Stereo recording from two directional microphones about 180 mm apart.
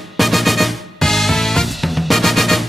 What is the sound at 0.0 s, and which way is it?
Music, centre (ahead or behind).